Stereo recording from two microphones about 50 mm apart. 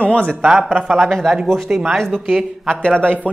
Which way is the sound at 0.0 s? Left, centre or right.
Left.